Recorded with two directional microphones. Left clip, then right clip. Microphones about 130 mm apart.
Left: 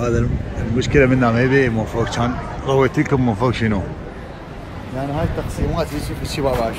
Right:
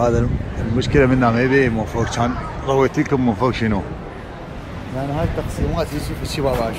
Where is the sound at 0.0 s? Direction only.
25° right (ahead or behind).